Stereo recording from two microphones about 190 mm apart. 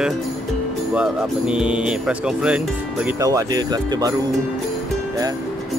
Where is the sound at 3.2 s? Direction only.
20° right (ahead or behind).